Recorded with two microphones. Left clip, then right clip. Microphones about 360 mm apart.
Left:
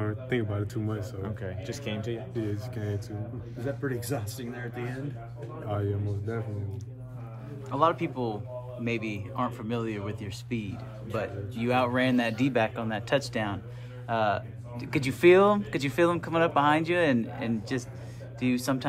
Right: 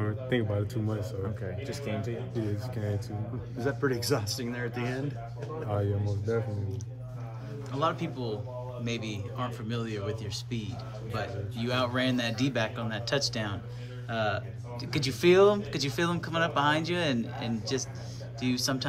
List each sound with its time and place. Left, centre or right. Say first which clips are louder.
0.0 s speech: even; centre
1.2 s a man's voice: even; left
2.4 s speech: left 1 dB; centre
3.6 s speech: right 4 dB; centre
5.7 s speech: left 1 dB; centre
7.7 s speech: left 5 dB; centre